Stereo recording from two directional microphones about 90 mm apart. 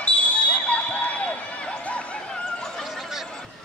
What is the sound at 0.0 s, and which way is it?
Basketball bounce, 15° left (ahead or behind).